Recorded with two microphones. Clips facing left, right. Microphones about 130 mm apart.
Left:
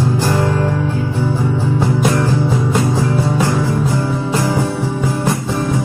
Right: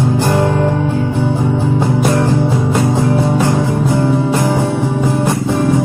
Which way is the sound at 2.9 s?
20° right (ahead or behind).